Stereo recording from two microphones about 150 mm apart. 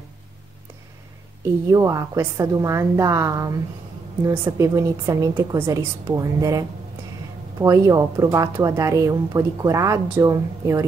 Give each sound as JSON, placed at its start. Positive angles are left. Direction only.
{"t": 1.7, "sound": "speech", "side_deg": -20}